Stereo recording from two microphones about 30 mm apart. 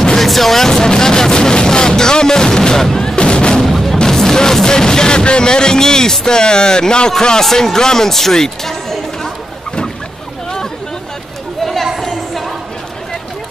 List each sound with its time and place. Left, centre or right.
0.2 s speech: centre
1.3 s a sound: left
3.2 s music: left
3.6 s music: centre
6.2 s speech: left
12.0 s a sound: centre